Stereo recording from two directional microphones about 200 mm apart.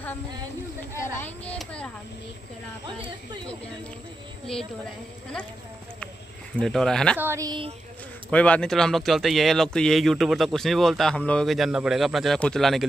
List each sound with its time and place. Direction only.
0.9 s a child's voice: 10° left (ahead or behind)
6.5 s speech: centre (ahead or behind)
7.2 s speech: 15° right (ahead or behind)
8.3 s speech: 5° left (ahead or behind)